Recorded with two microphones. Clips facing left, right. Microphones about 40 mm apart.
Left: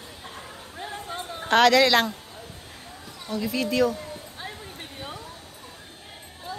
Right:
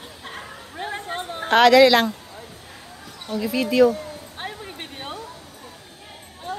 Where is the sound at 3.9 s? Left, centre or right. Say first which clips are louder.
Right 3 dB; right.